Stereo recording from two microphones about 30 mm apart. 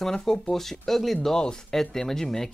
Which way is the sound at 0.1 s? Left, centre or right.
Centre.